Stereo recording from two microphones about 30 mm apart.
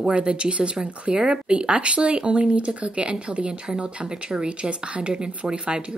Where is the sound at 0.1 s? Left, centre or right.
Right.